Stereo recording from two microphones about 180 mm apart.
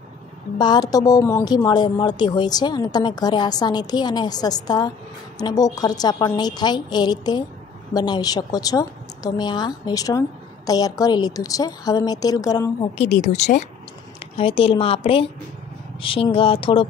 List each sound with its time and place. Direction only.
0.6 s speech: 25° left (ahead or behind)
13.2 s a woman's voice: 40° left (ahead or behind)